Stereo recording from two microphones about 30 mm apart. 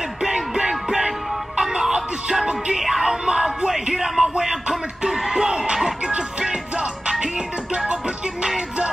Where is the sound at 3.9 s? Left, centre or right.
Centre.